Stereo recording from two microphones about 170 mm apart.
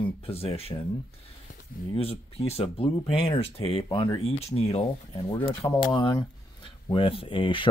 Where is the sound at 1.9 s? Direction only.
35° left (ahead or behind).